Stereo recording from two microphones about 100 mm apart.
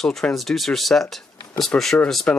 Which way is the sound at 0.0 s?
5° left (ahead or behind).